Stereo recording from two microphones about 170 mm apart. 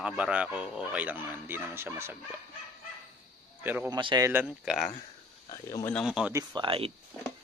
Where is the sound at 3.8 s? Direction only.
25° right (ahead or behind).